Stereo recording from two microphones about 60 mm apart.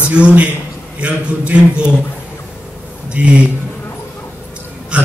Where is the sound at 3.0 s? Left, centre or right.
Centre.